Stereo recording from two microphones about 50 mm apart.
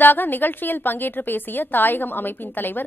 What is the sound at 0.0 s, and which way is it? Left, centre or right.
A woman's voice, left.